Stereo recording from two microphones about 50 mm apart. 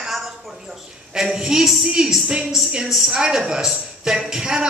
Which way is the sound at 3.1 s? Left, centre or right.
Centre.